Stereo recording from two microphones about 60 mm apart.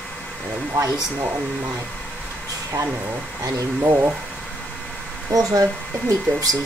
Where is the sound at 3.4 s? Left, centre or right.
Right.